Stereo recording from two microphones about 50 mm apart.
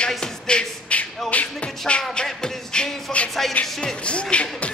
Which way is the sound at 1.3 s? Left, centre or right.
Left.